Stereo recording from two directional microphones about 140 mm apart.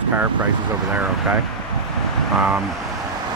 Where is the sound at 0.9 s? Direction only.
10° right (ahead or behind).